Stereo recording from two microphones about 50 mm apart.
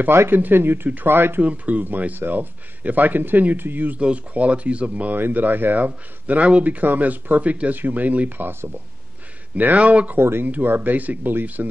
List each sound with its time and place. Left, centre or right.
0.3 s speech: right
1.4 s speech: right
4.0 s speech: right
5.1 s speech: right
10.1 s speech: right
10.4 s speech: right